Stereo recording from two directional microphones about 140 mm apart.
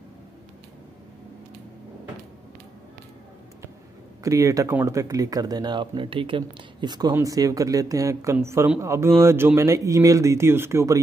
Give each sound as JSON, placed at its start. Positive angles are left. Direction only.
{"t": 4.2, "sound": "speech", "side_deg": -20}